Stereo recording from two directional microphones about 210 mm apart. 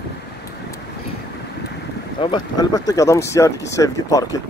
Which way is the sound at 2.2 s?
20° left (ahead or behind).